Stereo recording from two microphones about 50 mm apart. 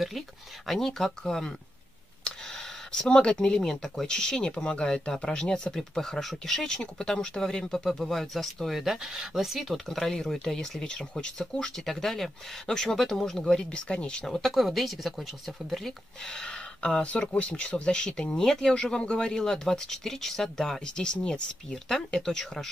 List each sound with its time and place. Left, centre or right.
0.7 s speech: centre; by 14.2 s left
14.2 s speech: centre
17.0 s speech: left; by 20.8 s centre
20.8 s speech: centre